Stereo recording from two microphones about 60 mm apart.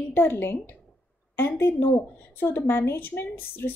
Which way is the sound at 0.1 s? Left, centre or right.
Left.